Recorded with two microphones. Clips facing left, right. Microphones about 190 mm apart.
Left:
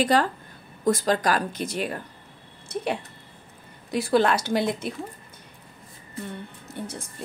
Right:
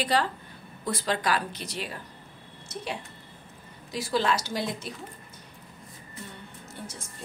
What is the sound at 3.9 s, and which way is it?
Speech, 55° left (ahead or behind).